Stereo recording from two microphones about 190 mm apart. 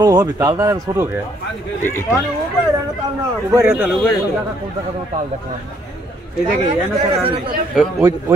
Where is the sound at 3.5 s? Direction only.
15° right (ahead or behind).